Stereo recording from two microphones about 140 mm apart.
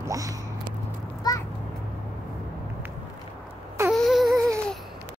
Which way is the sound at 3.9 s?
Centre (ahead or behind).